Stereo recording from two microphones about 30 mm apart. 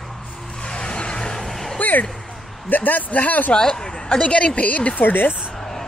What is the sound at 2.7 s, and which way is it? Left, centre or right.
Speech, left.